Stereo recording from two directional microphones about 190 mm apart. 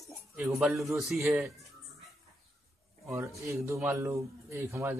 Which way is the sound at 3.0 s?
15° right (ahead or behind).